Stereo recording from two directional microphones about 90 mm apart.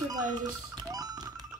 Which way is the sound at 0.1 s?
50° right (ahead or behind).